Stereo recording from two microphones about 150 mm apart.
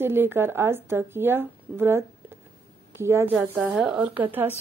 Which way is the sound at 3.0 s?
15° right (ahead or behind).